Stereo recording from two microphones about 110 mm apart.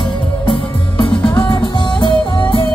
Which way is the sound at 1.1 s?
15° left (ahead or behind).